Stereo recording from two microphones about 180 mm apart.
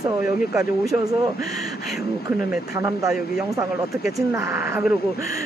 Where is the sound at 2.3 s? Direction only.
15° right (ahead or behind).